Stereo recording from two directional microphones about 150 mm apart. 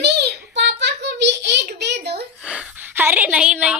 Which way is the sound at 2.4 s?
5° right (ahead or behind).